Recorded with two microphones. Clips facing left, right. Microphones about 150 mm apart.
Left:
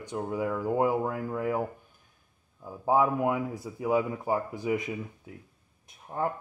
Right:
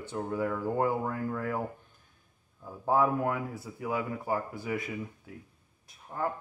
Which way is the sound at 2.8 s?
15° left (ahead or behind).